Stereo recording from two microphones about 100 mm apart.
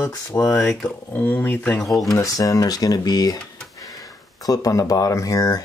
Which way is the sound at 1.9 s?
Centre (ahead or behind).